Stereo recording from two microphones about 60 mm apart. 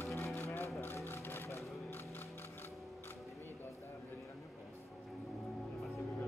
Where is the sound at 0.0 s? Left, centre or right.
Left.